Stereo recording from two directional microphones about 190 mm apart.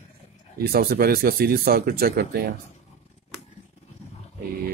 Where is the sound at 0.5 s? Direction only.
55° right (ahead or behind).